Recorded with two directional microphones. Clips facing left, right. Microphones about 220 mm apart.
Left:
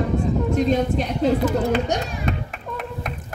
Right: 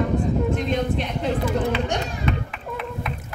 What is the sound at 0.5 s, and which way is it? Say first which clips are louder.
A child's voice: left 4 dB; 40° left (ahead or behind).